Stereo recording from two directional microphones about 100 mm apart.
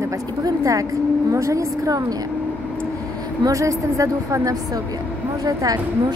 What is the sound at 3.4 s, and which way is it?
Speech, 35° right (ahead or behind).